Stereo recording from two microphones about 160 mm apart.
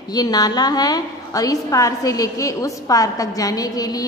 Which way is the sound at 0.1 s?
25° left (ahead or behind).